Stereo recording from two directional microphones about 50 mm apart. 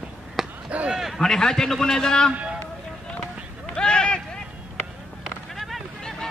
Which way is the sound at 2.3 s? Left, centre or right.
Right.